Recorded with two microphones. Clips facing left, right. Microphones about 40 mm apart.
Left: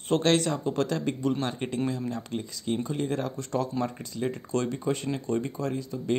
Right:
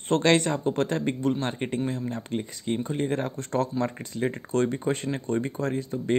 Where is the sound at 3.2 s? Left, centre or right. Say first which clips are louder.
Right 2 dB; right.